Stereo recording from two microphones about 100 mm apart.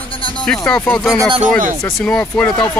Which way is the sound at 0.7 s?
15° left (ahead or behind).